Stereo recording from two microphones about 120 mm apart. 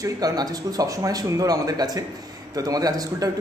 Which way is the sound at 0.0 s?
30° right (ahead or behind).